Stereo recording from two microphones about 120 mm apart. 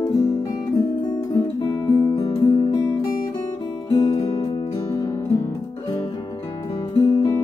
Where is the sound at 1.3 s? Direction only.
25° left (ahead or behind).